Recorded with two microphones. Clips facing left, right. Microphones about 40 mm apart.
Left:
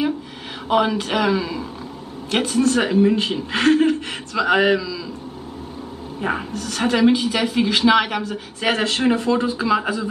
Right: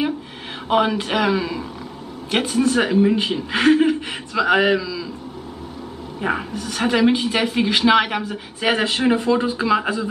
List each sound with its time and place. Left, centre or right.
0.7 s a woman's voice: centre
6.5 s a woman's voice: centre
6.8 s a woman's voice: centre
7.1 s a woman's voice: centre